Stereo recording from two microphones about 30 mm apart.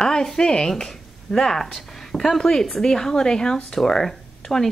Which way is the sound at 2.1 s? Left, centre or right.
Centre.